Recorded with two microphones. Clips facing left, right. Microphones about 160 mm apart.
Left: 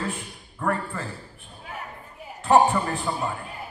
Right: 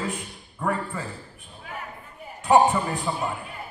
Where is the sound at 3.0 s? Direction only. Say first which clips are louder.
Even; centre (ahead or behind).